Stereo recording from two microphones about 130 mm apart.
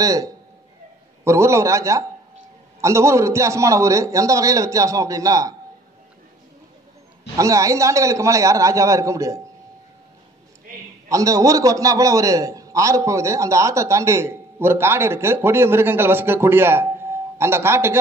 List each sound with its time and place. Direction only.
0.0 s a man's voice: 25° right (ahead or behind)
7.3 s a man's voice: 25° right (ahead or behind)
11.1 s a man's voice: 25° right (ahead or behind)